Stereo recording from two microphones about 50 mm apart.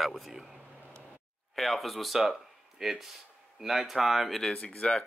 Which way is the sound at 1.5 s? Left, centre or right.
Centre.